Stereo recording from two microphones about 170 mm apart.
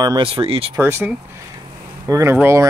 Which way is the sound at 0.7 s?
15° right (ahead or behind).